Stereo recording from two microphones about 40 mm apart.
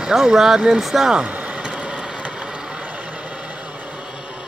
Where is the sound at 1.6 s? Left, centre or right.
Right.